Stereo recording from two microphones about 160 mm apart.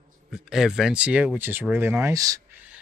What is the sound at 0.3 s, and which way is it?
Speech, 5° right (ahead or behind).